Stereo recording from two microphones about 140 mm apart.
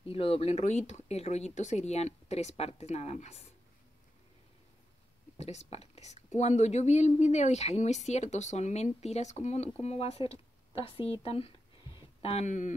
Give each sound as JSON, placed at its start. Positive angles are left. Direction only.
{"t": 0.0, "sound": "speech", "side_deg": 40}
{"t": 5.4, "sound": "speech", "side_deg": 50}
{"t": 12.4, "sound": "speech", "side_deg": 60}